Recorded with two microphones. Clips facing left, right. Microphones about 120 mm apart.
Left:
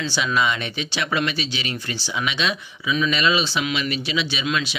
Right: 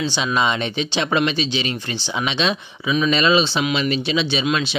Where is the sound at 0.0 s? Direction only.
20° right (ahead or behind).